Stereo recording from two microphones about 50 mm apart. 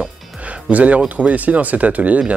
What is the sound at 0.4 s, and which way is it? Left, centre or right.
Speech, right.